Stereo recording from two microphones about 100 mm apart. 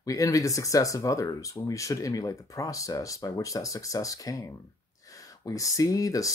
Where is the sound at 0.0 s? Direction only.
35° left (ahead or behind).